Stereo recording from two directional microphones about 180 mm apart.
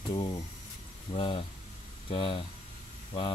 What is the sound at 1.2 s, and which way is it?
Speech, 30° left (ahead or behind).